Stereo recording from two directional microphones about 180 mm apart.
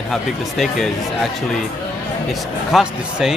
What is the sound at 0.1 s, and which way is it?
Speech, centre (ahead or behind).